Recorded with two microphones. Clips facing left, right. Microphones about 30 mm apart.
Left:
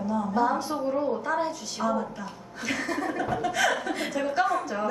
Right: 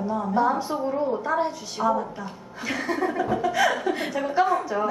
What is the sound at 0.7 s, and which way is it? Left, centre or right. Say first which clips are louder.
A woman's voice: right 2 dB; centre.